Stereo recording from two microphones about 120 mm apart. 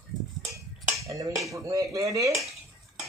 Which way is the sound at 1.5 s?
25° right (ahead or behind).